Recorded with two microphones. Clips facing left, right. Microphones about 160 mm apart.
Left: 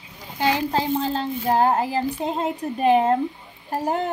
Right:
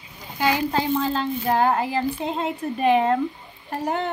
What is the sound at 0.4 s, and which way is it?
A woman's voice, 30° left (ahead or behind).